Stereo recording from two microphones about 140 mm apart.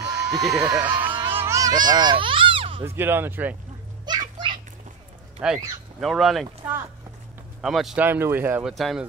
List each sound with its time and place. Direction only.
0.0 s a sound: centre (ahead or behind)
0.7 s speech: 10° right (ahead or behind)
1.2 s a sound: 15° right (ahead or behind); by 2.8 s 40° right (ahead or behind)
2.8 s speech: 15° right (ahead or behind)
4.0 s children playing: 30° right (ahead or behind)
5.4 s speech: 5° right (ahead or behind)
6.6 s speech: 10° right (ahead or behind)
8.0 s speech: 15° right (ahead or behind)
8.7 s speech: centre (ahead or behind)